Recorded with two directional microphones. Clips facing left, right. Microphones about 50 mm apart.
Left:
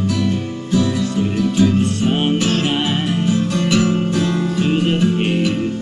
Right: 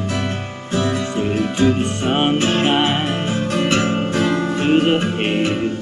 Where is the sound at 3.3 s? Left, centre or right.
Right.